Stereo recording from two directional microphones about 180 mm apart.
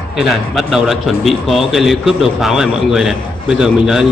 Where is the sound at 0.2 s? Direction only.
Centre (ahead or behind).